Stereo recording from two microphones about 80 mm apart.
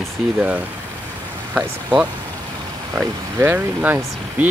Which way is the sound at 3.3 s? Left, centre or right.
Right.